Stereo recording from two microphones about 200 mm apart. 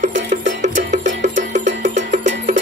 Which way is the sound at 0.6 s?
35° right (ahead or behind).